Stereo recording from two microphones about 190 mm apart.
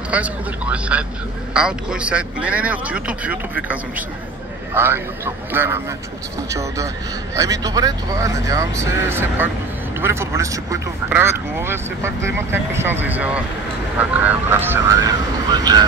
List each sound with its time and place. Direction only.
0.1 s speech: 5° right (ahead or behind)